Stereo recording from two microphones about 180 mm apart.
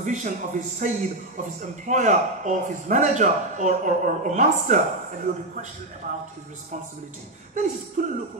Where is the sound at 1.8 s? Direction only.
45° right (ahead or behind).